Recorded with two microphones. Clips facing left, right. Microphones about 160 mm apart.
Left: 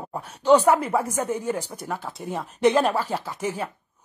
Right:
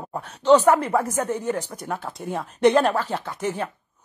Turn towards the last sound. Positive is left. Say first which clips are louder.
# right 2 dB
turn(degrees=10)  # may be behind; listen again after turning